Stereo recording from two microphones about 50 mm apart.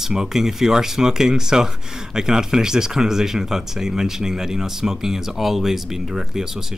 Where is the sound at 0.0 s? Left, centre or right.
Centre.